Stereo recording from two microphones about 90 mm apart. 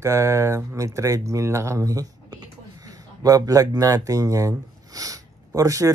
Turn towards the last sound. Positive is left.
turn(degrees=-35)  # may be behind; listen again after turning